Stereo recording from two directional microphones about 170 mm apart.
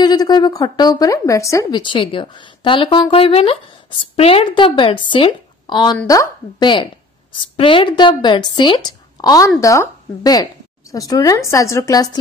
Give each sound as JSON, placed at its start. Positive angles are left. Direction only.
{"t": 0.0, "sound": "speech", "side_deg": 25}